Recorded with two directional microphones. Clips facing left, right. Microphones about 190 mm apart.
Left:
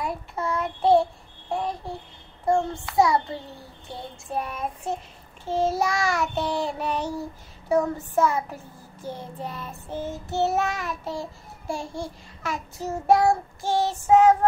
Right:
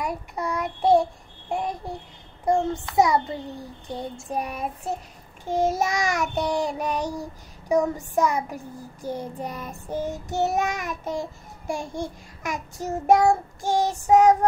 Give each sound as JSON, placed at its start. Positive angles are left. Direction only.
{"t": 0.0, "sound": "child singing", "side_deg": -15}
{"t": 2.4, "sound": "child singing", "side_deg": -20}
{"t": 9.0, "sound": "child singing", "side_deg": -40}
{"t": 9.4, "sound": "child singing", "side_deg": -15}